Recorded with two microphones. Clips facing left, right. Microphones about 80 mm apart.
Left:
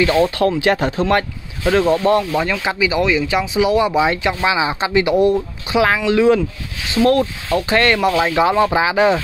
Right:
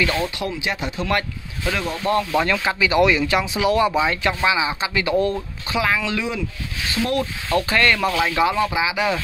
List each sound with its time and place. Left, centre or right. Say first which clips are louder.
0.0 s speech: left 7 dB; left
0.4 s speech: left 10 dB; left
1.0 s speech: left 6 dB; left
2.3 s speech: left 1 dB; centre
4.5 s speech: left 3 dB; left
7.7 s speech: left 6 dB; left